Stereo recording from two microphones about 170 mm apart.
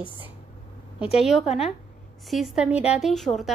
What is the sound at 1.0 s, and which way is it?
Speech, 35° left (ahead or behind).